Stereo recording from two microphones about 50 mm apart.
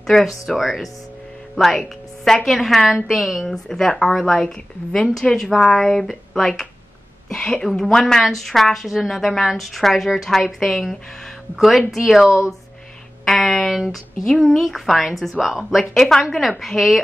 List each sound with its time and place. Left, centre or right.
0.0 s a woman's voice: centre
3.5 s a woman's voice: centre
13.2 s a sound: centre
14.4 s a woman's voice: centre